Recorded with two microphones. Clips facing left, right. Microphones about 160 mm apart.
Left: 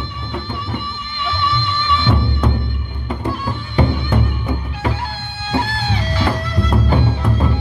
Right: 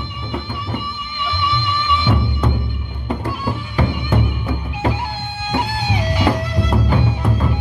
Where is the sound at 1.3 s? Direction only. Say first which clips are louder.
Even; 10° right (ahead or behind).